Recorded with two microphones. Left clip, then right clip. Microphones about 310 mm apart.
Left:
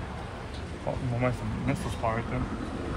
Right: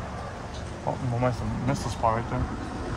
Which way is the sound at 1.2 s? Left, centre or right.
Centre.